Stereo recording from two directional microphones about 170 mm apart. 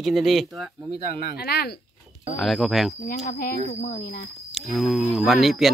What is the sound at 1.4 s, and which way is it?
Speech, 65° left (ahead or behind).